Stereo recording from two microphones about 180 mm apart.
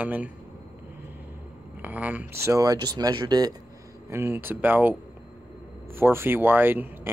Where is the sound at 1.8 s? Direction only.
10° right (ahead or behind).